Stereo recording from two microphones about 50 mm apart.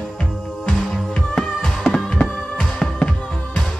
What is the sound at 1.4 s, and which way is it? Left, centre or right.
Music, centre.